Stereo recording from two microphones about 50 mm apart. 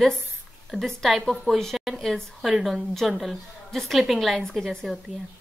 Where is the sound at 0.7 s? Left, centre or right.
Centre.